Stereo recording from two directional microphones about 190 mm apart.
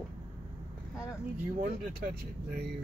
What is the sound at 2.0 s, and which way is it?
Speech, 50° right (ahead or behind).